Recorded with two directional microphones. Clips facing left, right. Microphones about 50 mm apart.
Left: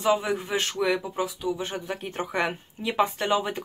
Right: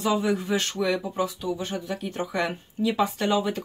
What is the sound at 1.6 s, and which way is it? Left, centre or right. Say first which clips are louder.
Speech: right 1 dB; left.